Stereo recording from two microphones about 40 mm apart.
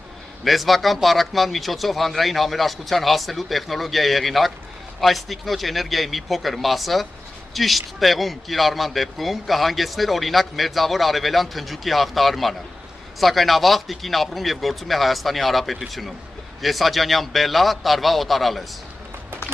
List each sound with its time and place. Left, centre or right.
0.4 s a man's voice: centre